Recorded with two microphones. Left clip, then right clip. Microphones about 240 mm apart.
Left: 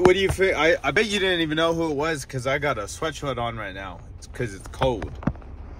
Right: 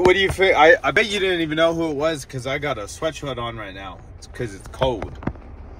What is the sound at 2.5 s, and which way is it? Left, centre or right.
A man's voice, centre.